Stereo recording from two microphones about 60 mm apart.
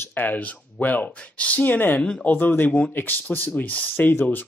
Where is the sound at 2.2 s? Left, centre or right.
Left.